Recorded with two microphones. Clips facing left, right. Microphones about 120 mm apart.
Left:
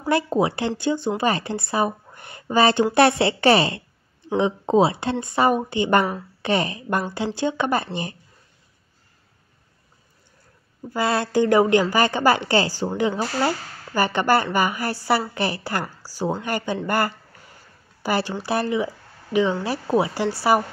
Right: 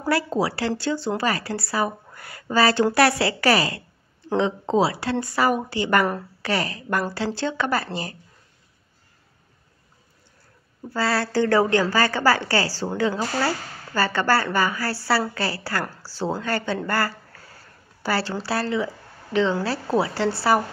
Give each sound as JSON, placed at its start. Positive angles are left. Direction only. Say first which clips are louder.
{"t": 0.1, "sound": "speech", "louder": "left 2 dB", "side_deg": 20}
{"t": 10.9, "sound": "a woman's voice", "louder": "left 1 dB", "side_deg": 20}